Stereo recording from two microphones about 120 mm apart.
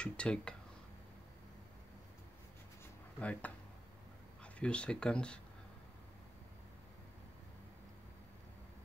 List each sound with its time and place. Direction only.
0.0 s speech: 10° left (ahead or behind)
3.2 s speech: 10° left (ahead or behind)